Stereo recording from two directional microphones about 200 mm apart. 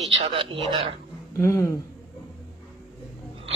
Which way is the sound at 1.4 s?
10° left (ahead or behind).